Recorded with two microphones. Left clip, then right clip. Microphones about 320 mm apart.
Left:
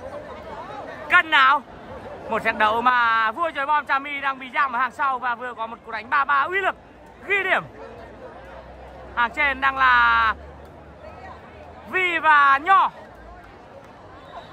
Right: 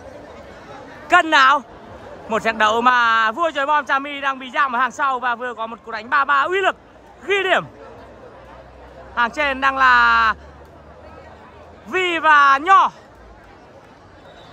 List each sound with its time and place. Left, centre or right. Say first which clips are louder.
1.0 s a man's voice: right 3 dB; centre
9.1 s a man's voice: right 2 dB; centre
11.9 s a man's voice: right 3 dB; centre